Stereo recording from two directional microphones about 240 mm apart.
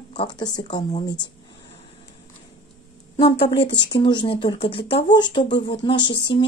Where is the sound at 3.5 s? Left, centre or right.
Centre.